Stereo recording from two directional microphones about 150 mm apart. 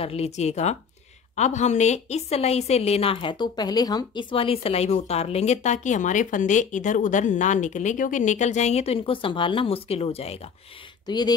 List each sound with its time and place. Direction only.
0.0 s a woman's voice: 40° left (ahead or behind)
11.1 s speech: 30° left (ahead or behind)